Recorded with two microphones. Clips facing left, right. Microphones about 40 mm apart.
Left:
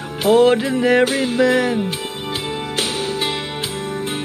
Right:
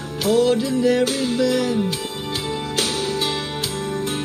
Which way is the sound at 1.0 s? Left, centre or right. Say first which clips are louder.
Left 4 dB; left.